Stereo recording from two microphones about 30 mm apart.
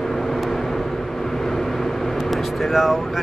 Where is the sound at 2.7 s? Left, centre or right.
Centre.